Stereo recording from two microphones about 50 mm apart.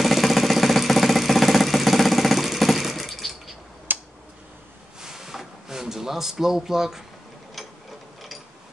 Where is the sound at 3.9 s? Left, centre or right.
Right.